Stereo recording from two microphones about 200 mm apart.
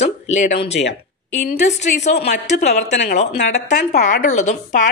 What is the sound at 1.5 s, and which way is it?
A woman's voice, 35° left (ahead or behind).